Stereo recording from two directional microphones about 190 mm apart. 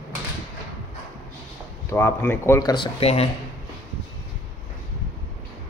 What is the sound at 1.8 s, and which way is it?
Speech, 15° left (ahead or behind).